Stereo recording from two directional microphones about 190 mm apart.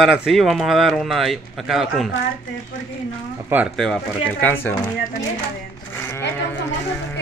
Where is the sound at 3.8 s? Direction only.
5° left (ahead or behind).